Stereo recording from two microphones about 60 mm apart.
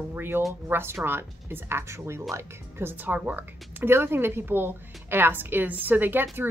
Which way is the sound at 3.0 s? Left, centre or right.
Right.